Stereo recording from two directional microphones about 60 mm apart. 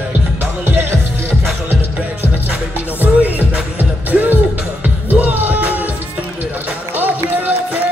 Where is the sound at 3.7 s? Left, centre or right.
Right.